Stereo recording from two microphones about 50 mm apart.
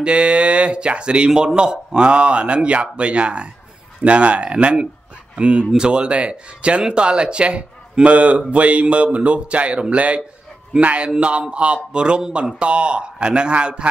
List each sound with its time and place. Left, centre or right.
0.0 s speech: right